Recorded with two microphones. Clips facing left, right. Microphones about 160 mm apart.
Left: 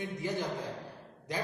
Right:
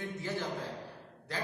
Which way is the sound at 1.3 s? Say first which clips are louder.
Left 2 dB; 15° left (ahead or behind).